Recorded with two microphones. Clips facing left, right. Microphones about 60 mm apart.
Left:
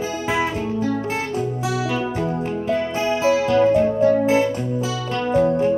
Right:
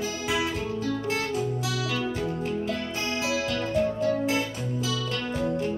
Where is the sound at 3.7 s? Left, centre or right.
Left.